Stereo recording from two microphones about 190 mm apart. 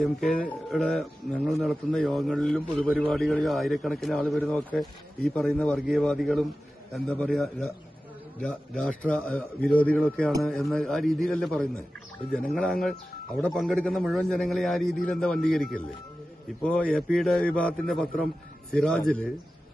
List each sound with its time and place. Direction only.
0.0 s a man's voice: 5° left (ahead or behind)